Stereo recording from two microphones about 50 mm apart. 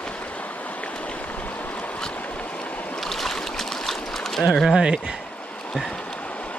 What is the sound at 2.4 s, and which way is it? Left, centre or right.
Stream, left.